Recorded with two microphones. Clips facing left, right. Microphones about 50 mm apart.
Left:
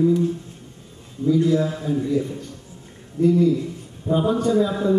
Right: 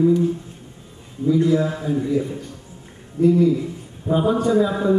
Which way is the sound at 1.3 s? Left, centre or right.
Centre.